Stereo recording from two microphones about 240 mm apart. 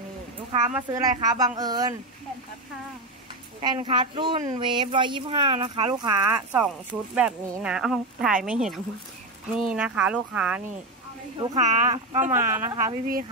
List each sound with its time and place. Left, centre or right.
0.5 s speech: right
0.7 s a woman's voice: centre
3.6 s speech: centre
11.5 s speech: right
12.3 s a woman's voice: centre